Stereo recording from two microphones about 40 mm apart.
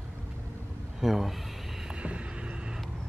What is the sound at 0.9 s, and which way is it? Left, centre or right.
Speech, centre.